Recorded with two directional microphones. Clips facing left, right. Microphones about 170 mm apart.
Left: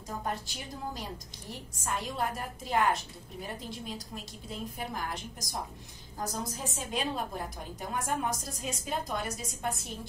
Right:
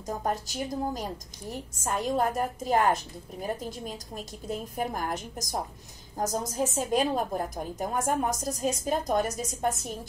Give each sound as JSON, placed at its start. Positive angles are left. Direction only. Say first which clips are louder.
{"t": 0.2, "sound": "a woman's voice", "louder": "right 7 dB", "side_deg": -40}